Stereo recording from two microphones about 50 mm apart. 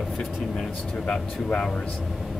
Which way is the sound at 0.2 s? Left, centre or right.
Centre.